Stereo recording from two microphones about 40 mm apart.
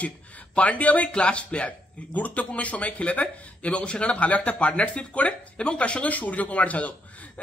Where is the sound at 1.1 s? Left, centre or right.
Left.